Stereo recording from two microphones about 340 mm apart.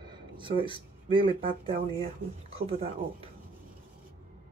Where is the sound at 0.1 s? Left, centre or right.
Centre.